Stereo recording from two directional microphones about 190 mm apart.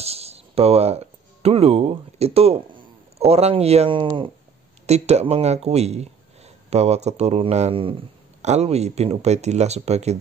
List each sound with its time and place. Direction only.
0.0 s speech: 35° right (ahead or behind)